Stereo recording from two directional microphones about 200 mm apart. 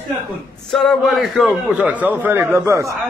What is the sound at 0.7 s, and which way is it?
A man's voice, centre (ahead or behind).